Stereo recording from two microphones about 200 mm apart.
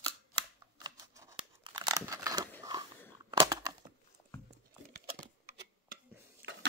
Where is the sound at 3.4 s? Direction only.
20° right (ahead or behind).